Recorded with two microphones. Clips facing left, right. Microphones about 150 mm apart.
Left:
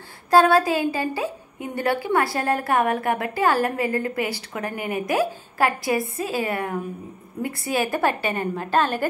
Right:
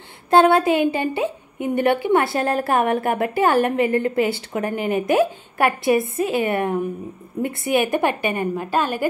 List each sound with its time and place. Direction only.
0.3 s a woman's voice: 25° right (ahead or behind)